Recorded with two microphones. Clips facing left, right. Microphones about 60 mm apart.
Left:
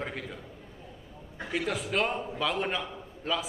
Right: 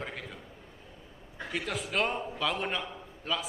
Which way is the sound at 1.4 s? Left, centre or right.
Centre.